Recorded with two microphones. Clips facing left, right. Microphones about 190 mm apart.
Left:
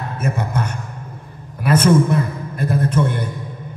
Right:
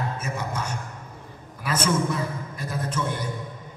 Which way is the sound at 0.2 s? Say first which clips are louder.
Left 8 dB; 60° left (ahead or behind).